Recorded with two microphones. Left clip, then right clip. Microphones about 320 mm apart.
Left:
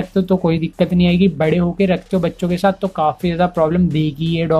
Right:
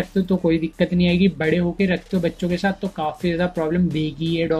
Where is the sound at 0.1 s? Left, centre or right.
Left.